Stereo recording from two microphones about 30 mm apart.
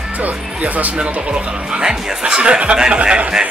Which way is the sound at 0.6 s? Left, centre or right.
Right.